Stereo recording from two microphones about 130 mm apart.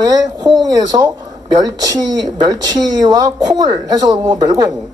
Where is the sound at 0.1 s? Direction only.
30° right (ahead or behind).